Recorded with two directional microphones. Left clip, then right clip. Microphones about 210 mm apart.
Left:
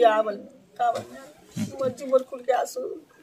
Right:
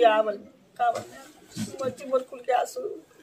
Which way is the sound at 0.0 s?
10° left (ahead or behind).